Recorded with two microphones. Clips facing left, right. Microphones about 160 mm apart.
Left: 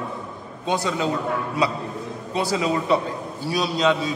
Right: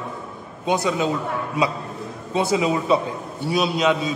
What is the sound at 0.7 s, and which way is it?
Speech, 15° right (ahead or behind).